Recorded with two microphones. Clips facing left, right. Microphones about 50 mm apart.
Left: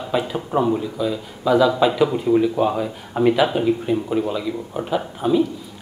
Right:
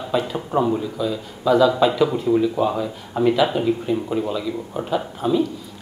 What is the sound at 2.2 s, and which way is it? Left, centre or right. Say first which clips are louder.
Speech: left 1 dB; centre.